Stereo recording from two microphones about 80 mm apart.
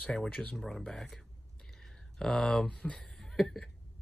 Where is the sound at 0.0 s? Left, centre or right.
Centre.